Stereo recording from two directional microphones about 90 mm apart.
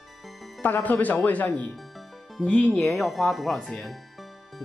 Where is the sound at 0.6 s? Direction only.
20° left (ahead or behind).